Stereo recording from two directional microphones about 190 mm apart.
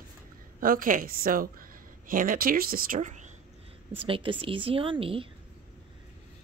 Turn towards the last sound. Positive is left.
turn(degrees=-30)  # may be behind; listen again after turning